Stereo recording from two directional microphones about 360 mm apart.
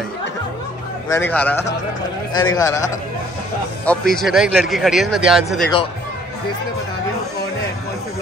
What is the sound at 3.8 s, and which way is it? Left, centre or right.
Speech, centre.